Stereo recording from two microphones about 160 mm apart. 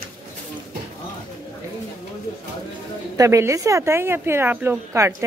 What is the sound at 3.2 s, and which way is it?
A woman's voice, 20° right (ahead or behind).